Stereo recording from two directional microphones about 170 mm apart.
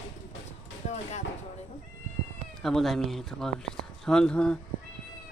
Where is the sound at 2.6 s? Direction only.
Centre (ahead or behind).